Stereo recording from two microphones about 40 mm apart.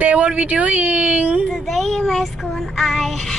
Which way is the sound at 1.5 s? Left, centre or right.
Centre.